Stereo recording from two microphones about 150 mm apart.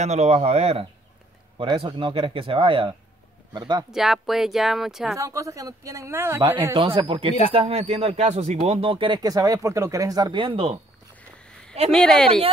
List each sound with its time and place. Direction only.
0.0 s speech: 45° right (ahead or behind); by 3.8 s 30° right (ahead or behind)
3.9 s speech: centre (ahead or behind)
5.1 s speech: 20° right (ahead or behind)
6.7 s speech: 35° right (ahead or behind)
11.4 s a sound: 5° left (ahead or behind)
11.9 s speech: 5° left (ahead or behind)